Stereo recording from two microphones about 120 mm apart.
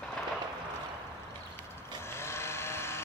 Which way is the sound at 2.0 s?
20° left (ahead or behind).